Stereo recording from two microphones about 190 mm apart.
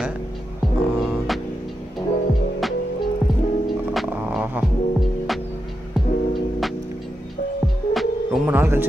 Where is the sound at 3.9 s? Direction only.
5° right (ahead or behind).